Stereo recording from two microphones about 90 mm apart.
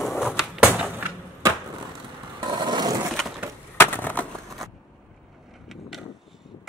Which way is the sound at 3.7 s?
25° left (ahead or behind).